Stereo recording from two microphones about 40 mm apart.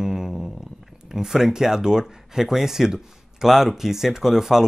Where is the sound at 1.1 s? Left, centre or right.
Centre.